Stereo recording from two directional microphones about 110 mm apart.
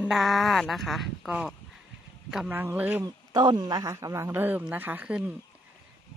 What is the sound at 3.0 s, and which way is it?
A man's voice, 40° right (ahead or behind).